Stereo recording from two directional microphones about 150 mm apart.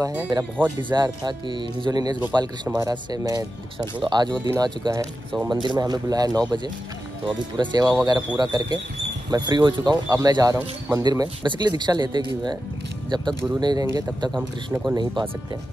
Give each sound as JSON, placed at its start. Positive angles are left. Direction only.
{"t": 0.0, "sound": "speech", "side_deg": -15}
{"t": 0.7, "sound": "speech", "side_deg": -30}
{"t": 13.6, "sound": "speech", "side_deg": -25}
{"t": 14.3, "sound": "speech", "side_deg": -10}
{"t": 15.2, "sound": "speech", "side_deg": -30}